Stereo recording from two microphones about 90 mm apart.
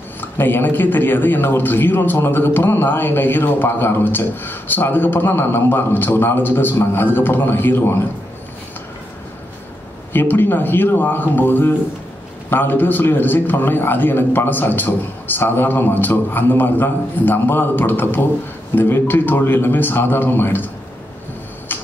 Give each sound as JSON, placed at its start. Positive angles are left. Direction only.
{"t": 0.2, "sound": "a man's voice", "side_deg": 25}
{"t": 10.1, "sound": "a man's voice", "side_deg": 20}
{"t": 21.7, "sound": "tick-tock", "side_deg": 25}